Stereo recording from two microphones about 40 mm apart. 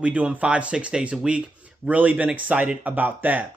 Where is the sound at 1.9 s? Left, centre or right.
Right.